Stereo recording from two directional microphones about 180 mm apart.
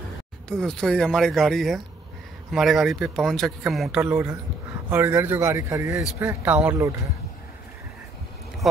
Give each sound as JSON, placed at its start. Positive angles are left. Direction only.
{"t": 0.5, "sound": "speech", "side_deg": 0}
{"t": 4.0, "sound": "a man's voice", "side_deg": -10}